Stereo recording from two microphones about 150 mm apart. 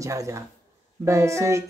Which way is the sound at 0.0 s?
20° right (ahead or behind).